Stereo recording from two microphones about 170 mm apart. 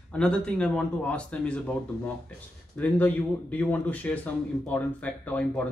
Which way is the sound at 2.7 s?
10° left (ahead or behind).